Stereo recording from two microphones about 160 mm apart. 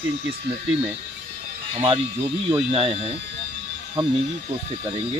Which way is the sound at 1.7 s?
35° right (ahead or behind).